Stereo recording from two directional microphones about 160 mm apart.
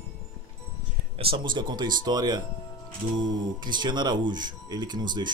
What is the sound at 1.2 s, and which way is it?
Speech, 35° right (ahead or behind).